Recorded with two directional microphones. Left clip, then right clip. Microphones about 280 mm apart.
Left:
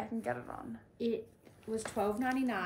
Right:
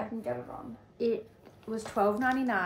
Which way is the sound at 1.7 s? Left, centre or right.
Centre.